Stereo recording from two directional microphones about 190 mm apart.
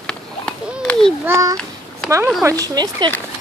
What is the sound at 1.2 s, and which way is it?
Speech, 15° right (ahead or behind).